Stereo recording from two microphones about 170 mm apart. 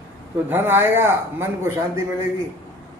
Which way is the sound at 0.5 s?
15° right (ahead or behind).